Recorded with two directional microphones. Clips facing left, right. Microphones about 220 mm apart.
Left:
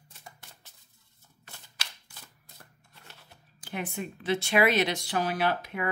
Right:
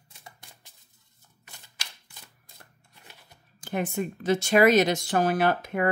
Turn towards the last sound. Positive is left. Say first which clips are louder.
# right 5 dB
turn(degrees=-45)  # may be behind; listen again after turning